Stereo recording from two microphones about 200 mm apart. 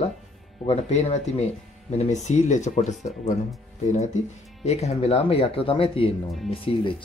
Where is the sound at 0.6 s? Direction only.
35° left (ahead or behind).